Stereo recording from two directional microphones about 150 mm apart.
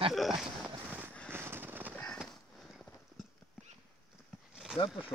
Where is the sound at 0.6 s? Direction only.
10° right (ahead or behind).